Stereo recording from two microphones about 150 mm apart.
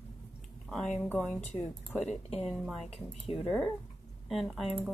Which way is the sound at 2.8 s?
40° left (ahead or behind).